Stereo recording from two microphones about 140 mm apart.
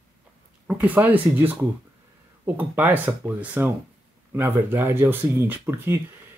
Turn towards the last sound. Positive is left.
turn(degrees=-15)  # may be behind; listen again after turning